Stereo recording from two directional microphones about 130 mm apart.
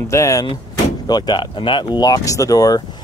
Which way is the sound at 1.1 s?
30° left (ahead or behind).